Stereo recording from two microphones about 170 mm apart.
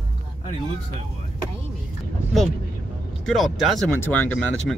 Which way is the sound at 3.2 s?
Centre (ahead or behind).